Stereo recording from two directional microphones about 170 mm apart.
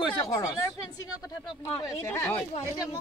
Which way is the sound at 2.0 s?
15° left (ahead or behind).